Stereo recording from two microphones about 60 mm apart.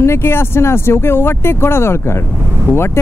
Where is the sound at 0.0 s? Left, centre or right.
Left.